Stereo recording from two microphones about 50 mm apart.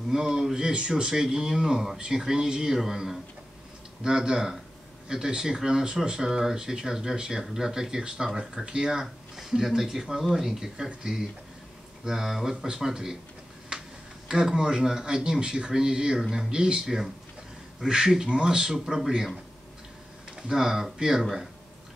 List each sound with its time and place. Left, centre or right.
0.1 s speech: centre
9.0 s speech: centre
20.4 s speech: centre